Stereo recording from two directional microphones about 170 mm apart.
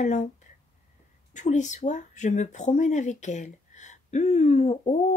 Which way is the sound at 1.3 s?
45° left (ahead or behind).